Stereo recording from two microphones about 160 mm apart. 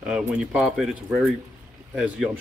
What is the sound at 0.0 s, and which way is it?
Speech, 5° right (ahead or behind).